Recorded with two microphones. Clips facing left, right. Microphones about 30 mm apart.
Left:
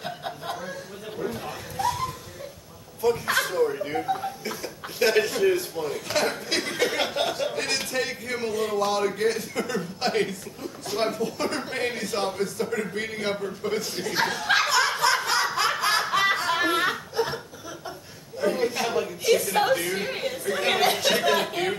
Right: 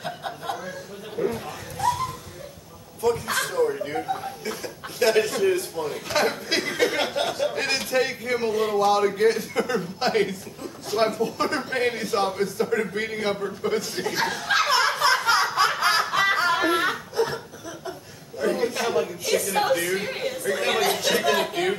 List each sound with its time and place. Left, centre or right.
0.0 s chuckle: centre
1.4 s dog: centre
3.0 s chuckle: centre
3.5 s a sound: centre
7.5 s a sound: centre
8.8 s speech: centre
14.3 s chuckle: centre
15.0 s a sound: right
15.4 s snicker: centre
16.4 s a sound: centre
17.1 s chuckle: centre
18.4 s chuckle: centre
20.5 s speech: centre